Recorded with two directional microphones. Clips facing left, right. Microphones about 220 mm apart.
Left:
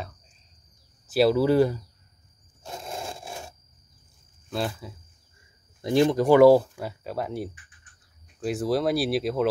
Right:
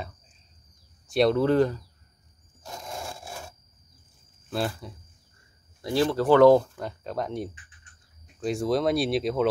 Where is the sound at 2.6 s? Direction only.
25° left (ahead or behind).